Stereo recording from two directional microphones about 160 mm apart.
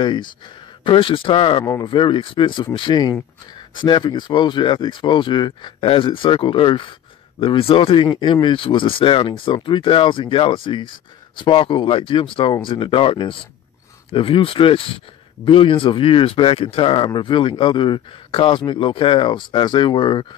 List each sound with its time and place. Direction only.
0.0 s speech: 30° left (ahead or behind)